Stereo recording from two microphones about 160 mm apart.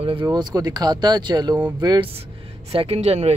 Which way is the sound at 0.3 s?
25° right (ahead or behind).